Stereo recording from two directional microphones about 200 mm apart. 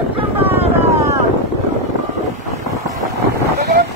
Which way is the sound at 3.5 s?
55° right (ahead or behind).